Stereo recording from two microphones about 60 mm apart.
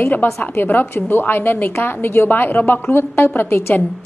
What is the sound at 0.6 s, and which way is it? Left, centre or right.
A woman's voice, left.